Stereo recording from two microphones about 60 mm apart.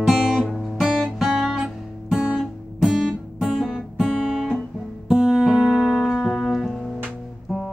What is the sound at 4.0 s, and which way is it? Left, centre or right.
Guitar, centre.